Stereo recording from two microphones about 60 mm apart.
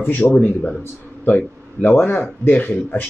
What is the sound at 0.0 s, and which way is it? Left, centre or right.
Speech, left.